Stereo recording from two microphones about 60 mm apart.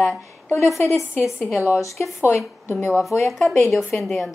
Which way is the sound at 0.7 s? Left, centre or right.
Left.